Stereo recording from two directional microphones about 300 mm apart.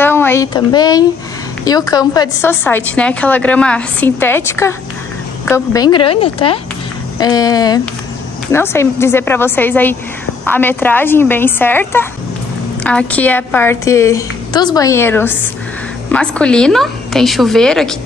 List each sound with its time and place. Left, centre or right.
0.0 s a woman's voice: centre